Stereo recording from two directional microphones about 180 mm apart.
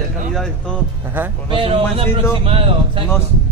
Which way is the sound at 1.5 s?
30° right (ahead or behind).